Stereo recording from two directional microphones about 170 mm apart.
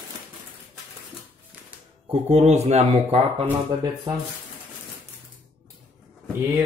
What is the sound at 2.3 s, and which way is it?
Speech, 40° right (ahead or behind).